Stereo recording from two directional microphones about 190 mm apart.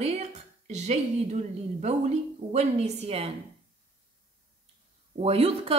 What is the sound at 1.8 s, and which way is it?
A woman's voice, 35° right (ahead or behind).